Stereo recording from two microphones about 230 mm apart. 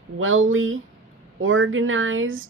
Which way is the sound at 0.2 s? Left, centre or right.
Right.